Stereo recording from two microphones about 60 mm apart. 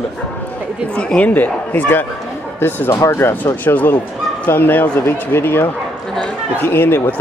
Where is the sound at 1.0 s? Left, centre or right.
Centre.